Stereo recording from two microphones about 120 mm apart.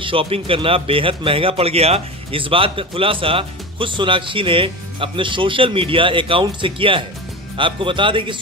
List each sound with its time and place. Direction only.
0.0 s speech: 50° right (ahead or behind)